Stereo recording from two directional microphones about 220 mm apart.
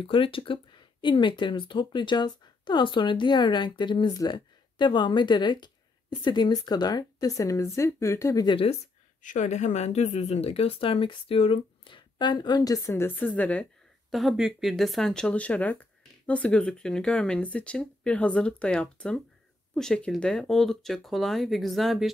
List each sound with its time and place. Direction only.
0.0 s speech: 25° left (ahead or behind)
9.2 s speech: 35° left (ahead or behind); by 22.1 s centre (ahead or behind)